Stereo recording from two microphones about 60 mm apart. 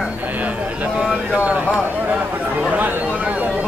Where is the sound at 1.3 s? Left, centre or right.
Right.